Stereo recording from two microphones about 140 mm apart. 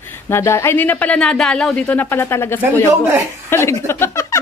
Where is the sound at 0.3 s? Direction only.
20° left (ahead or behind).